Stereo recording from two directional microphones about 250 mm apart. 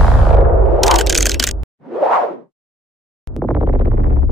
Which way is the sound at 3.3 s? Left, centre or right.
Centre.